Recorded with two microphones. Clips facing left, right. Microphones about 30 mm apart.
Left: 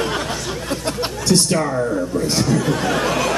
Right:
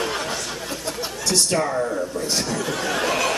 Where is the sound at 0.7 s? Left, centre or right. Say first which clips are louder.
Left 6 dB; left.